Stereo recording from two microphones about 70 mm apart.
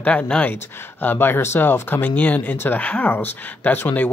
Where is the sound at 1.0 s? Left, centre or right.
Left.